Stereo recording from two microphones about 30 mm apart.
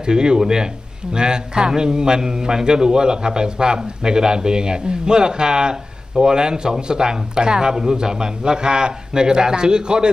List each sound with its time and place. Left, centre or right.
0.0 s a man's voice: right